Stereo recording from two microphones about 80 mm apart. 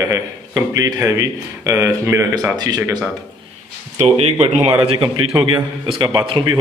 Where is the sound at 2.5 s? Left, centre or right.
Right.